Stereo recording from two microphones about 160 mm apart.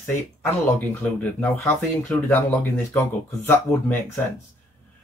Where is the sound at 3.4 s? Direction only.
15° left (ahead or behind).